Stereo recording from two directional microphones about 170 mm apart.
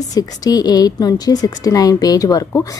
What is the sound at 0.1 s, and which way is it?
A woman's voice, 20° left (ahead or behind).